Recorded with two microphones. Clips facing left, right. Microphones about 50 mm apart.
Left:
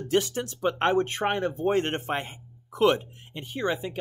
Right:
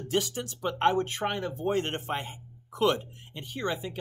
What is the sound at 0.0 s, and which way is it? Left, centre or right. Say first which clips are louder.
Speech: left 4 dB; left.